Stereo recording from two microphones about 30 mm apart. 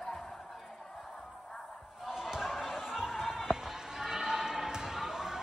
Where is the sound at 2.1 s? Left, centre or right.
Right.